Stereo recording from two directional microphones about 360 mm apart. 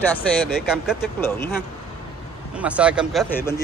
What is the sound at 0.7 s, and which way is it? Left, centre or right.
Speech, centre.